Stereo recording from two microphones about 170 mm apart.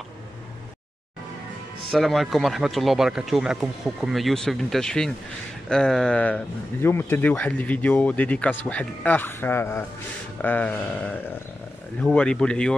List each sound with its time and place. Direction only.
1.9 s speech: centre (ahead or behind)